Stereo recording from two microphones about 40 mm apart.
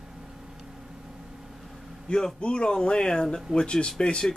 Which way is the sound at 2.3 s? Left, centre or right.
Left.